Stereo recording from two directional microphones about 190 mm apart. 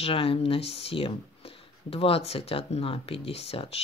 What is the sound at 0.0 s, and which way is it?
Speech, 30° left (ahead or behind).